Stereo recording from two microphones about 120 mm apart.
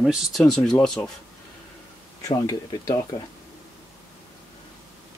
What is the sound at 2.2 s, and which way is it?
Speech, 35° left (ahead or behind).